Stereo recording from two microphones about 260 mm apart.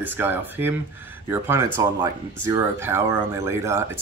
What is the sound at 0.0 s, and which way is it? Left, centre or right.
Speech, centre.